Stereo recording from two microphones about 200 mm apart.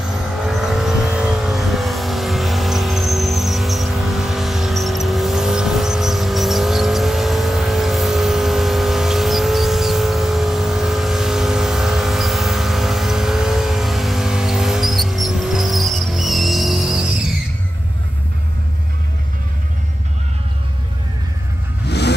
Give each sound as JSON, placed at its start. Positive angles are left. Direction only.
{"t": 0.5, "sound": "vehicle", "side_deg": 0}
{"t": 21.8, "sound": "vehicle", "side_deg": 55}